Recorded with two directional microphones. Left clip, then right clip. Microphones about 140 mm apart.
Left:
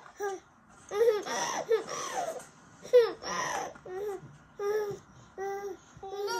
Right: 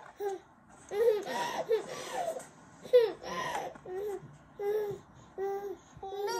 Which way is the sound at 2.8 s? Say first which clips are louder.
Left 2 dB; 30° left (ahead or behind).